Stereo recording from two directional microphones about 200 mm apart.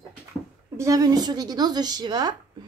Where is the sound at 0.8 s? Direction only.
15° right (ahead or behind).